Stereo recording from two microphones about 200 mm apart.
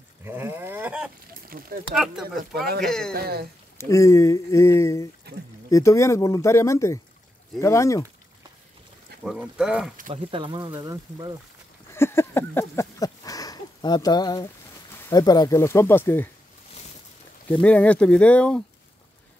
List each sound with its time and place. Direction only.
0.2 s livestock: 10° right (ahead or behind)
1.5 s speech: 45° right (ahead or behind)
2.8 s speech: 5° left (ahead or behind)
3.1 s speech: 50° right (ahead or behind)
3.7 s speech: 15° left (ahead or behind)
5.3 s speech: 55° right (ahead or behind)
5.7 s speech: 15° left (ahead or behind)
9.2 s speech: 5° right (ahead or behind)
10.1 s speech: 25° right (ahead or behind)
11.9 s a sound: 10° left (ahead or behind)
15.0 s speech: 20° left (ahead or behind)
17.5 s speech: 5° left (ahead or behind)